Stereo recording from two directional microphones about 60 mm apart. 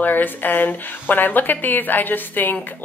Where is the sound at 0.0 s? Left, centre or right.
Left.